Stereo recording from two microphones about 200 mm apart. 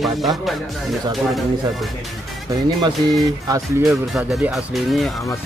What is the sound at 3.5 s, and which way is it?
Speech, 15° right (ahead or behind).